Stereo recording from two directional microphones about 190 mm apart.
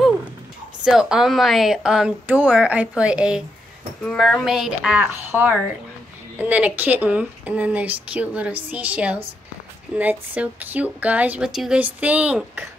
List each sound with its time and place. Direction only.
0.8 s speech: 5° right (ahead or behind)